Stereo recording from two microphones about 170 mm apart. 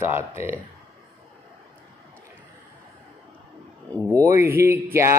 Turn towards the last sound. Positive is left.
turn(degrees=-15)  # may be behind; listen again after turning